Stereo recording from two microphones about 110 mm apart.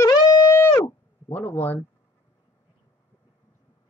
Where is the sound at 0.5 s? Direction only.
25° left (ahead or behind).